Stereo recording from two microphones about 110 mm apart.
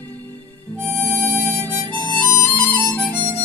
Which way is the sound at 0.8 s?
20° left (ahead or behind).